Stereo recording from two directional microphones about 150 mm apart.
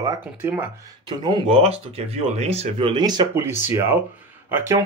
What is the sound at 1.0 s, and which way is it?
Speech, 30° right (ahead or behind).